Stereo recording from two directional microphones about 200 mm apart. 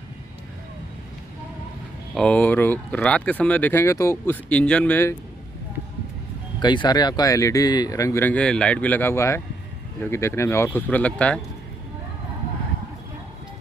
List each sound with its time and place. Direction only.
2.1 s speech: 5° left (ahead or behind)
6.6 s speech: 20° left (ahead or behind); by 11.3 s 5° left (ahead or behind)